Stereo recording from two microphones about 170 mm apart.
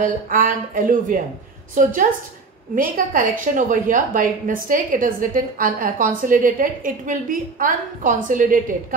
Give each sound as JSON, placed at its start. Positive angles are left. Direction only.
{"t": 0.0, "sound": "a woman's voice", "side_deg": -55}